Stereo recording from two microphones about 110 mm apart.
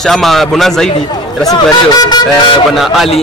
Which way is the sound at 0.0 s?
Centre (ahead or behind).